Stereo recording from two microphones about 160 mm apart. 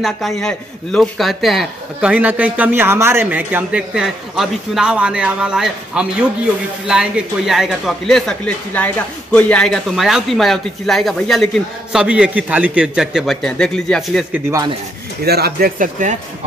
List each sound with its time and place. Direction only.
0.0 s a man's voice: centre (ahead or behind)
15.2 s speech: 80° right
15.8 s speech: 50° right (ahead or behind)